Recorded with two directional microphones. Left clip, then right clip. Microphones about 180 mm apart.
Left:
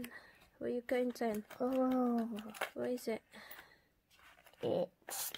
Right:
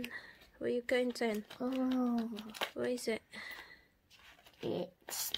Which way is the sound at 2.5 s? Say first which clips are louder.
Right 3 dB; 5° left (ahead or behind).